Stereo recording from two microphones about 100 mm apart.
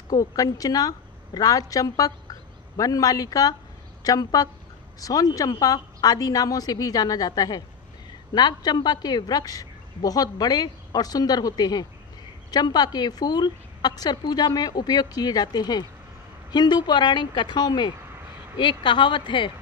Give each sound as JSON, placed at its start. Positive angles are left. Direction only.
{"t": 0.1, "sound": "a woman's voice", "side_deg": 35}